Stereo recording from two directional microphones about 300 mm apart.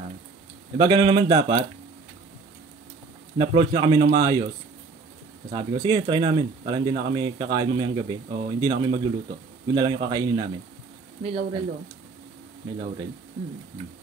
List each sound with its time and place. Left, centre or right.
0.7 s speech: centre
3.3 s speech: centre
5.5 s speech: centre